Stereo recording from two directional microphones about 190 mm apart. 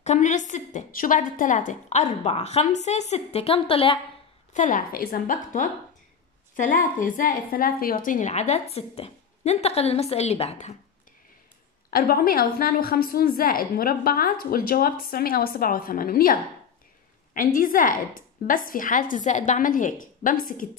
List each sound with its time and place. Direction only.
0.0 s a woman's voice: 40° left (ahead or behind)
4.6 s a woman's voice: 45° left (ahead or behind)
11.9 s a woman's voice: 50° left (ahead or behind)